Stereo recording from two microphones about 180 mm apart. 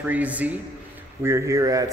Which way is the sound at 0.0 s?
10° right (ahead or behind).